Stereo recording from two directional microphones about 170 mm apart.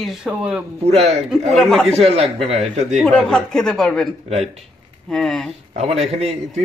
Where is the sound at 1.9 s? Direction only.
35° right (ahead or behind).